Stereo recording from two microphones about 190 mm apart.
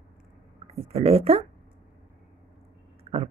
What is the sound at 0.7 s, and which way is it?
Speech, 30° right (ahead or behind).